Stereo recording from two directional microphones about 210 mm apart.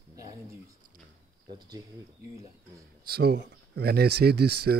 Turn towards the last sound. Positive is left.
turn(degrees=-50)  # may be behind; listen again after turning